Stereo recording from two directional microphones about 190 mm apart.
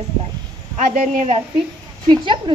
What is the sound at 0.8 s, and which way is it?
Speech, 40° right (ahead or behind).